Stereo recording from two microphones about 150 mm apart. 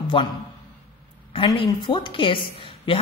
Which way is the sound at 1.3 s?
30° left (ahead or behind).